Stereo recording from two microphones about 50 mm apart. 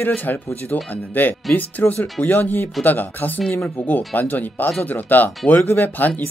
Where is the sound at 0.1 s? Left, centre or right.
Left.